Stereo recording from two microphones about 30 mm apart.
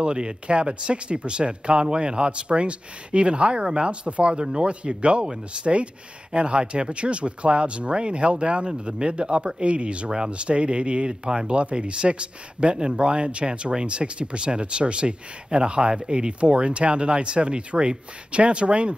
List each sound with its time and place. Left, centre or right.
0.0 s speech: right